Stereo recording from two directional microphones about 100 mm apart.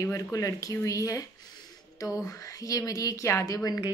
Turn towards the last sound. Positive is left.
turn(degrees=35)  # may be behind; listen again after turning